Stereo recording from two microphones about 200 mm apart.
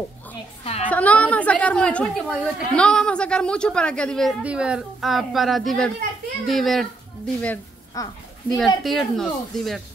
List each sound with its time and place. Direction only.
0.8 s a woman's voice: 5° left (ahead or behind)
7.4 s a sound: 15° left (ahead or behind)
8.5 s a woman's voice: centre (ahead or behind)